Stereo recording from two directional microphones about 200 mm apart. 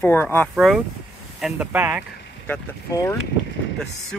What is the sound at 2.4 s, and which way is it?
Speech, 15° left (ahead or behind).